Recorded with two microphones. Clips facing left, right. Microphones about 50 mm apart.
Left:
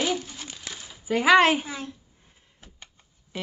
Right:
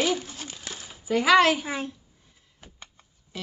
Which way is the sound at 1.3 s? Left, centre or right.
Left.